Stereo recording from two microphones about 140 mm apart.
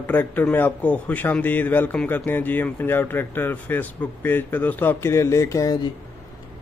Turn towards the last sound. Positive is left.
turn(degrees=25)  # may be behind; listen again after turning